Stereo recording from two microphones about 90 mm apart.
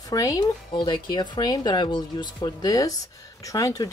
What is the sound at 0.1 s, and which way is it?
Speech, 40° left (ahead or behind).